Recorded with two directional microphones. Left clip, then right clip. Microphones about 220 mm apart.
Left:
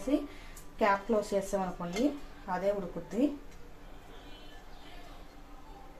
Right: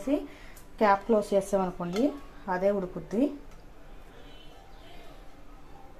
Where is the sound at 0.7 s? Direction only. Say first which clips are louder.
Right 5 dB; 45° right (ahead or behind).